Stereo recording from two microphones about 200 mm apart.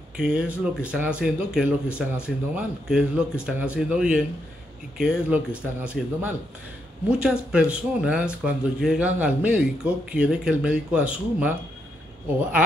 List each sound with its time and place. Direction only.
0.2 s speech: 5° right (ahead or behind)